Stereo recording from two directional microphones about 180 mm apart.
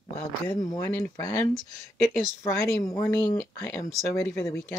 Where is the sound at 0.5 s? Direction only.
20° left (ahead or behind).